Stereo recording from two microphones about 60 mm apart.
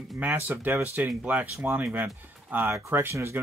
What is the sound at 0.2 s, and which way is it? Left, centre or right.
Speech, right.